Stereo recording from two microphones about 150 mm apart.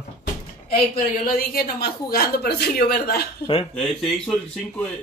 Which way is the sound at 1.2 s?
75° left (ahead or behind).